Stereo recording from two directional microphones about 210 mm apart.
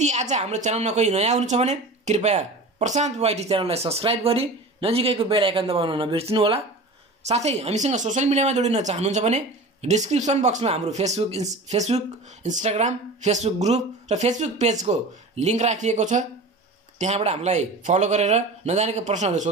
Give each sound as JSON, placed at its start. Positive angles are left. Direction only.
{"t": 0.0, "sound": "a woman's voice", "side_deg": -35}